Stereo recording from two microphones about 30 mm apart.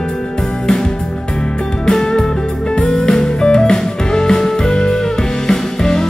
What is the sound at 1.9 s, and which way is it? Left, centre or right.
Music, left.